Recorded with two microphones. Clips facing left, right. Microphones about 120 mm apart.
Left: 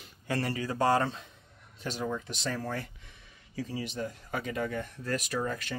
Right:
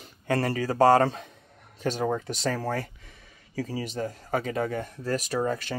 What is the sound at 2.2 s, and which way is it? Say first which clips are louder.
Speech: right 6 dB; 80° right.